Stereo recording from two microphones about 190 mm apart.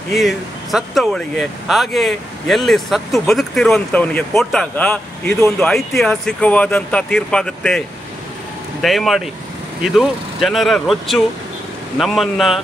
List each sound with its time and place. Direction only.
0.1 s speech: centre (ahead or behind)
8.8 s speech: centre (ahead or behind)